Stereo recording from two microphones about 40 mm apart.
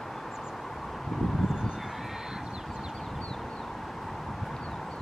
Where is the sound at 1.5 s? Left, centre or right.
Centre.